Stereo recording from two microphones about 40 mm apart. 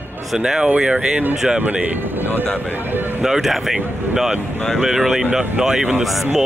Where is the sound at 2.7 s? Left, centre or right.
Right.